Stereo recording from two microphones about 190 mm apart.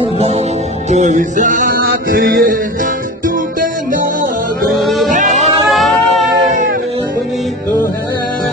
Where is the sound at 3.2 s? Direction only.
45° right (ahead or behind).